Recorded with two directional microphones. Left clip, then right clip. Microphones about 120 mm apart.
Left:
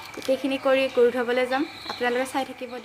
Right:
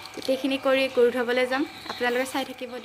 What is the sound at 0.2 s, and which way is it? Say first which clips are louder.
Speech: left 1 dB; centre (ahead or behind).